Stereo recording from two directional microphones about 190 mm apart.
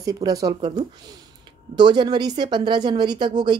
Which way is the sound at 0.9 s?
25° right (ahead or behind).